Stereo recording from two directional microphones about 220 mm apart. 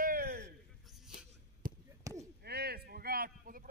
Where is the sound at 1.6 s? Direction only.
40° right (ahead or behind).